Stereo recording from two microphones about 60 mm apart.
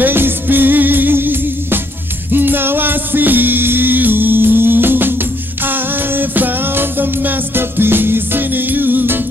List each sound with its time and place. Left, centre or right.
0.0 s music: right